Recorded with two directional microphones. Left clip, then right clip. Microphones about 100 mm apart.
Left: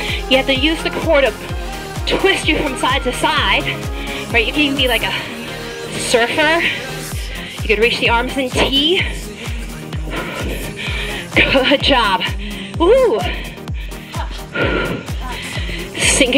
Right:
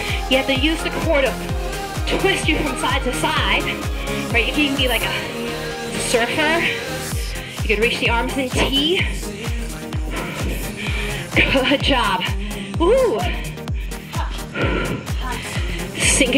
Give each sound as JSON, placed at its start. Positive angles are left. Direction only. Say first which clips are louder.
{"t": 0.0, "sound": "speech", "louder": "left 4 dB", "side_deg": 35}
{"t": 10.1, "sound": "music", "louder": "left 4 dB", "side_deg": 35}
{"t": 12.8, "sound": "speech", "louder": "left 4 dB", "side_deg": 35}
{"t": 14.5, "sound": "music", "louder": "left 5 dB", "side_deg": 35}